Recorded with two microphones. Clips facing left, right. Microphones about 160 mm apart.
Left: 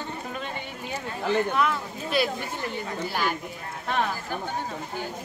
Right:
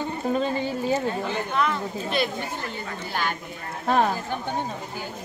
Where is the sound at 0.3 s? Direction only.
35° right (ahead or behind).